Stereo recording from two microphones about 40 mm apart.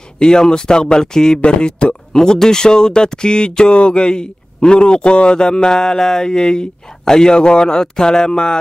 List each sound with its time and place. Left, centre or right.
0.2 s speech: centre
2.1 s speech: centre